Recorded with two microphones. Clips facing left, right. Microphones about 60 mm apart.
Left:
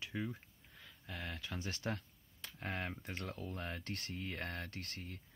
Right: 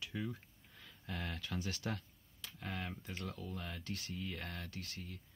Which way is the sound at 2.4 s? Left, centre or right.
Left.